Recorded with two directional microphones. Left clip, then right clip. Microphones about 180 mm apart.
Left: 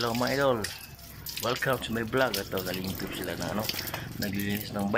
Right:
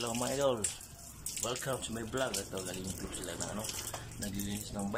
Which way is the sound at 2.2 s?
20° left (ahead or behind).